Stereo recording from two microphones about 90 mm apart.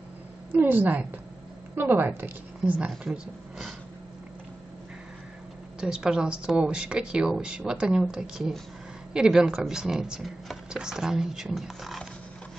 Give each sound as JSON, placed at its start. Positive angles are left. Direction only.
{"t": 0.5, "sound": "speech", "side_deg": -20}
{"t": 3.0, "sound": "speech", "side_deg": -5}
{"t": 5.8, "sound": "speech", "side_deg": -10}